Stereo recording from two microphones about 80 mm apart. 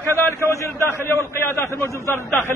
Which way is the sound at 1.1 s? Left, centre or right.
Left.